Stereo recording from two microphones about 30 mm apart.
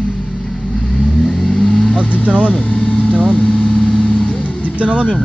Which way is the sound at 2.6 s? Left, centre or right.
Left.